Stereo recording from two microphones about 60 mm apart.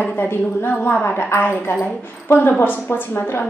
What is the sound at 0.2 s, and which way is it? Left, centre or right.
A woman's voice, left.